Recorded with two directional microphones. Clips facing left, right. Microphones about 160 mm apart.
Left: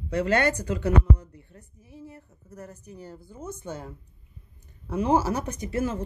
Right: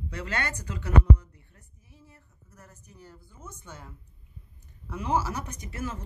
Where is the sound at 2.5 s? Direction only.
40° left (ahead or behind).